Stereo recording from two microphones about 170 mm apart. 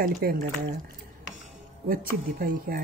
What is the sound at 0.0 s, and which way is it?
Speech, 60° right (ahead or behind).